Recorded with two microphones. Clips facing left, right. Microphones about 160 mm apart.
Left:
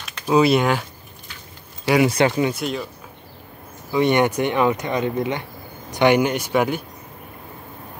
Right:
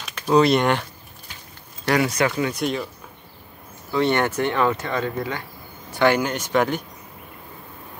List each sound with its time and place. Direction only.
0.3 s speech: 5° left (ahead or behind)
2.0 s speech: 30° left (ahead or behind)
2.5 s speech: centre (ahead or behind)
3.9 s speech: 15° left (ahead or behind)